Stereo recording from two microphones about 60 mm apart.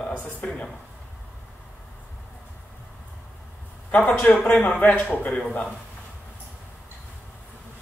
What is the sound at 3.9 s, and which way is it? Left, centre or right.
Speech, left.